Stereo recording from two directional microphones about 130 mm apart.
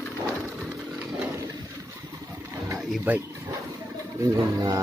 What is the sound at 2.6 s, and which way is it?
Wild animals, 15° right (ahead or behind).